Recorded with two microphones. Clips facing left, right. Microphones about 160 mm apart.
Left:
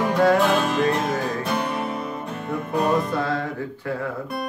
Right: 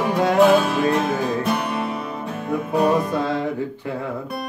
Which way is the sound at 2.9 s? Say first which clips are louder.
Right 2 dB; 15° right (ahead or behind).